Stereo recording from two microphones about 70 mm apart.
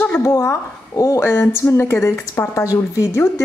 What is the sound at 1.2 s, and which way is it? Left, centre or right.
Speech, left.